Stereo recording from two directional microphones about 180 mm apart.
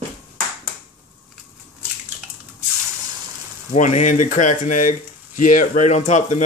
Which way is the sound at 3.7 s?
45° left (ahead or behind).